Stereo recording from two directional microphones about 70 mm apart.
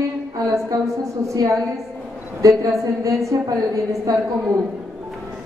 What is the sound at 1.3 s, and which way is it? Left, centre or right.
Speech, right.